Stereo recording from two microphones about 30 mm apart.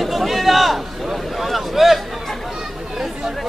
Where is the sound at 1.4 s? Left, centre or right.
Centre.